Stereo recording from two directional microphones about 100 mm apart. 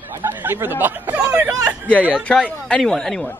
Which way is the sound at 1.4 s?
35° right (ahead or behind).